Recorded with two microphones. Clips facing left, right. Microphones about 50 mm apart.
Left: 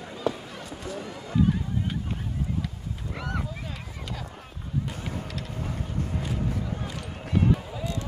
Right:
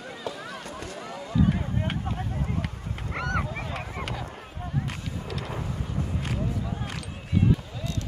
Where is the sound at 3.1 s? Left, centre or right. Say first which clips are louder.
Right 5 dB; right.